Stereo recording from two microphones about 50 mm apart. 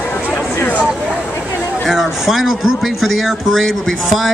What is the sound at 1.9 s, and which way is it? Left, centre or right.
Speech, centre.